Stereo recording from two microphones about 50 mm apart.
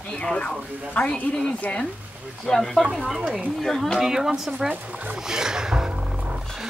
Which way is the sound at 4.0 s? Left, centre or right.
Centre.